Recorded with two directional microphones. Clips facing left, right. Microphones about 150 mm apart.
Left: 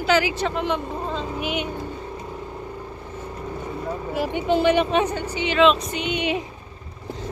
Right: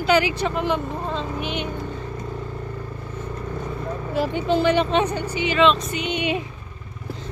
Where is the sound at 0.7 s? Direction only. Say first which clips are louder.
Right 1 dB; 5° left (ahead or behind).